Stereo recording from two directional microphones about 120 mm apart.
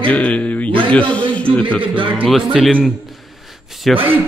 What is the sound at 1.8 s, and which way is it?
Speech, 45° right (ahead or behind).